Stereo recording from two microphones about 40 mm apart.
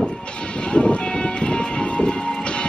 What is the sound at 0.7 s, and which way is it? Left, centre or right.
Train, left.